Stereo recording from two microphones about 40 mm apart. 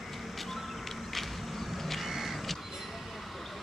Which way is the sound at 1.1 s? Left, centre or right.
Centre.